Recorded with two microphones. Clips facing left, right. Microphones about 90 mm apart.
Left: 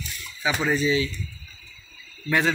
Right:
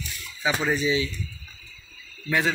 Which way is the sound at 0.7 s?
15° right (ahead or behind).